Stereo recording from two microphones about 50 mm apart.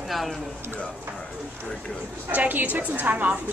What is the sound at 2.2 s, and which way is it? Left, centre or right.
A woman's voice, right.